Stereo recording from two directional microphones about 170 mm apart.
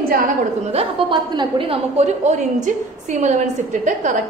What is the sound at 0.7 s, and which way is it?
A woman's voice, 35° right (ahead or behind).